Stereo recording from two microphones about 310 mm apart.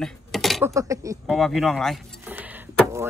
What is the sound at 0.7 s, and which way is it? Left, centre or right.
Speech, centre.